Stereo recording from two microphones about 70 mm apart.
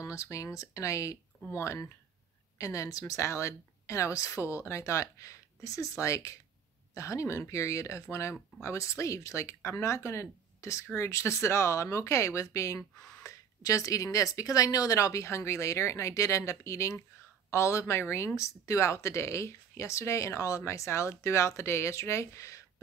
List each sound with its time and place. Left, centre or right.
0.0 s speech: left
3.2 s speech: left